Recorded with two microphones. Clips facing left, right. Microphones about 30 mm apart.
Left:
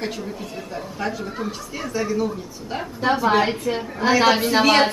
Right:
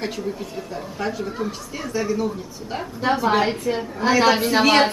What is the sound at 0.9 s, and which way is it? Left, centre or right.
A woman's voice, centre.